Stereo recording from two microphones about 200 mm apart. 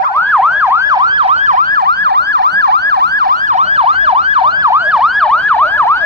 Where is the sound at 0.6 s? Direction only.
15° right (ahead or behind).